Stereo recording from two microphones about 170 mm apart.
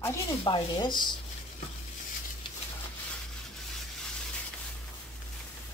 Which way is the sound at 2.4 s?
25° left (ahead or behind).